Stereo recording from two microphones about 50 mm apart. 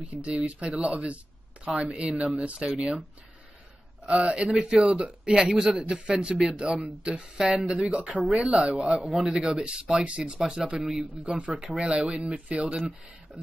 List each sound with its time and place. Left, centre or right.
0.0 s a man's voice: right
4.1 s a man's voice: right
9.0 s speech: centre
10.4 s speech: centre
11.2 s a man's voice: right